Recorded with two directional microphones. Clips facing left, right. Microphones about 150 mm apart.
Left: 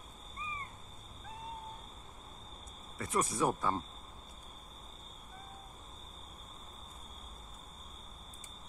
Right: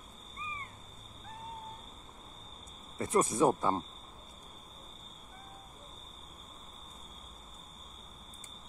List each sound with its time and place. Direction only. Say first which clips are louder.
3.0 s speech: right 5 dB; 25° right (ahead or behind)